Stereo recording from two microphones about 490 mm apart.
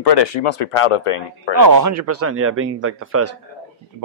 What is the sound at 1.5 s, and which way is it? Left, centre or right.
Speech, right.